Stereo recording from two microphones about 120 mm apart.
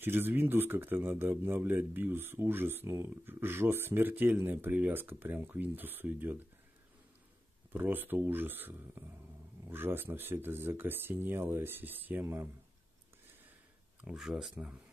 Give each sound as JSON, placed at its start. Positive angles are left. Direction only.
{"t": 0.0, "sound": "speech", "side_deg": -15}
{"t": 7.7, "sound": "speech", "side_deg": -15}
{"t": 14.0, "sound": "speech", "side_deg": -5}